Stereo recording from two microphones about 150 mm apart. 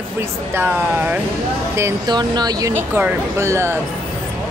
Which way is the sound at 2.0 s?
30° right (ahead or behind).